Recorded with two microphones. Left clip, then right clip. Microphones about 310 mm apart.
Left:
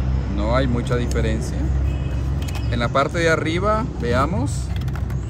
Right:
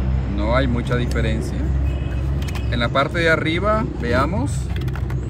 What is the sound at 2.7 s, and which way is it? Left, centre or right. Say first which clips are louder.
Speech: even; centre.